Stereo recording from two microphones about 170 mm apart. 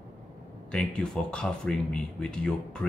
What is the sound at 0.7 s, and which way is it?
Speech, 5° left (ahead or behind).